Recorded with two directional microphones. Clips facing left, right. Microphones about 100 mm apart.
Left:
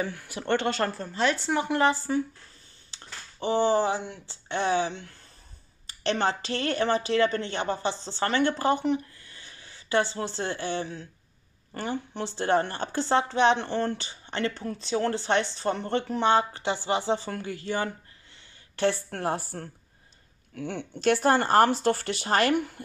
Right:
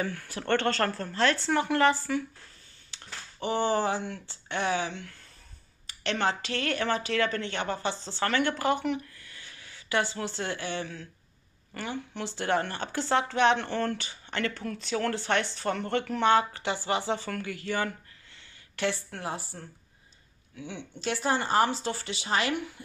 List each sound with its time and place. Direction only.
0.0 s speech: 20° left (ahead or behind)
18.8 s speech: 45° left (ahead or behind)